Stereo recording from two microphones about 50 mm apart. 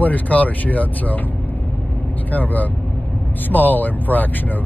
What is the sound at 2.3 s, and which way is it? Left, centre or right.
Speech, left.